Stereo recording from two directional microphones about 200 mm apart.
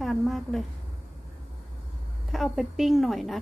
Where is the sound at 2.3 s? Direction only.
Centre (ahead or behind).